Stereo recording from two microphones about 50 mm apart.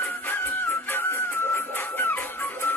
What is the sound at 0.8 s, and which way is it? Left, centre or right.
Music, left.